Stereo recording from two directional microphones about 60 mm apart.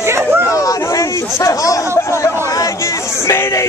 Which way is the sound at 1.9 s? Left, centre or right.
Left.